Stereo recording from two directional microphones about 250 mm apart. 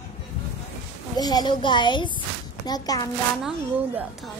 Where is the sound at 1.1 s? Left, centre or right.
Centre.